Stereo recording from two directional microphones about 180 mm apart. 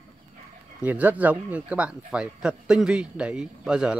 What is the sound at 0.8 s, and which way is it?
Speech, 10° right (ahead or behind).